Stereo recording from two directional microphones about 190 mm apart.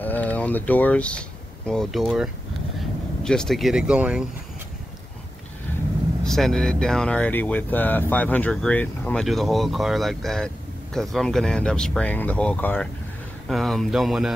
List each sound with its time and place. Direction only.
0.0 s speech: 10° left (ahead or behind)
6.2 s speech: centre (ahead or behind)